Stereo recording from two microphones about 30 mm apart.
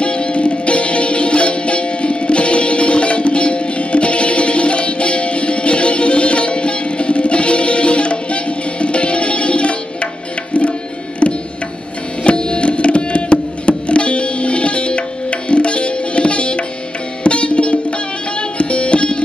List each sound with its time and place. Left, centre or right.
0.0 s music: left
12.2 s music: left